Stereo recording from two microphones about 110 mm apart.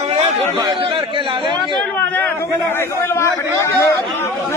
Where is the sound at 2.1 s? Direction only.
20° left (ahead or behind).